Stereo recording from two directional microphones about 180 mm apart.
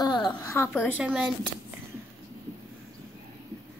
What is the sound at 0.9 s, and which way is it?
Speech, 5° right (ahead or behind).